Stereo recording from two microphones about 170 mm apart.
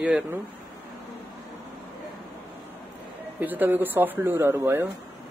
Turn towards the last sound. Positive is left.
turn(degrees=-15)  # may be behind; listen again after turning